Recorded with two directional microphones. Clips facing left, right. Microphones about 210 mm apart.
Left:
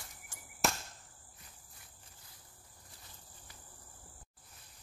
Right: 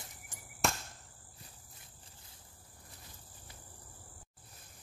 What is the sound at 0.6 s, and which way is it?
Cricket, centre (ahead or behind).